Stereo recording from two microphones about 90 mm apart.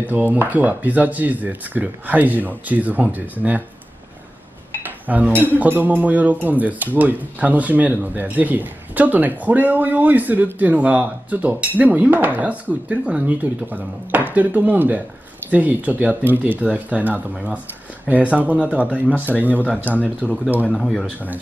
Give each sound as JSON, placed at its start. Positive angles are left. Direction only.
{"t": 0.0, "sound": "speech", "side_deg": -20}
{"t": 4.8, "sound": "dishes", "side_deg": -20}
{"t": 5.4, "sound": "speech", "side_deg": -20}
{"t": 19.6, "sound": "speech", "side_deg": 20}
{"t": 20.2, "sound": "speech", "side_deg": -20}
{"t": 20.6, "sound": "speech", "side_deg": 5}